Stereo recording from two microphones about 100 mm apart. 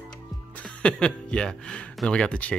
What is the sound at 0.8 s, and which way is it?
Speech, 10° left (ahead or behind).